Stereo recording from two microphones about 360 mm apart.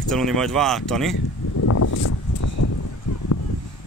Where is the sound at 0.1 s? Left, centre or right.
Centre.